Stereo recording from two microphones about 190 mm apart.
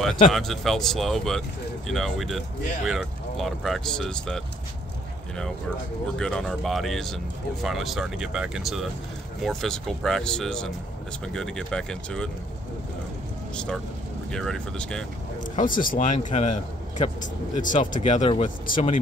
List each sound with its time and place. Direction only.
0.3 s speech: centre (ahead or behind)
6.1 s speech: 5° left (ahead or behind)
14.3 s speech: 5° left (ahead or behind)
15.5 s speech: 45° left (ahead or behind)